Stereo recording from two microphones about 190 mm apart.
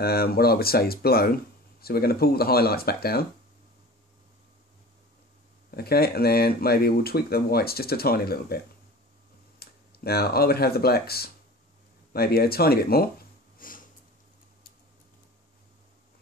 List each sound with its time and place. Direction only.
0.0 s speech: 55° left (ahead or behind)
5.7 s speech: 55° left (ahead or behind)
9.6 s speech: 55° left (ahead or behind)
13.6 s sniff: 45° left (ahead or behind)